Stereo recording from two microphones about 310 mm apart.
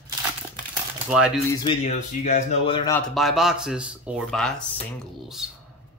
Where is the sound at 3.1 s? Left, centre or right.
Centre.